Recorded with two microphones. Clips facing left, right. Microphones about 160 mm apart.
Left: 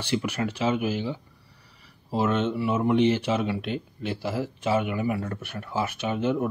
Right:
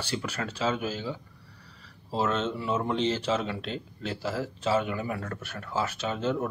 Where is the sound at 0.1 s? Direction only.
15° left (ahead or behind).